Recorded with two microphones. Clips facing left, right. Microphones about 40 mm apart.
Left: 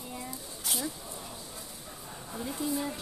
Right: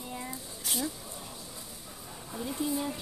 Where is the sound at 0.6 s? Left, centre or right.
Centre.